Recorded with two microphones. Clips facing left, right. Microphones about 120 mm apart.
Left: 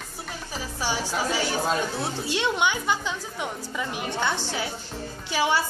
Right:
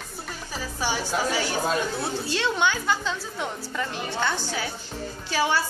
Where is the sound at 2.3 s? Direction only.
15° left (ahead or behind).